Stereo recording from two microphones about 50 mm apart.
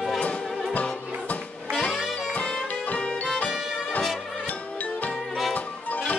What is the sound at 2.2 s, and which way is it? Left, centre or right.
Music, left.